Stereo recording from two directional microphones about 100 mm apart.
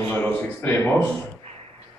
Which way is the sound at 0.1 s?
20° left (ahead or behind).